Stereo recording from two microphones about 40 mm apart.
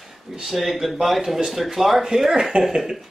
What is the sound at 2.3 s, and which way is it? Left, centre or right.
Speech, right.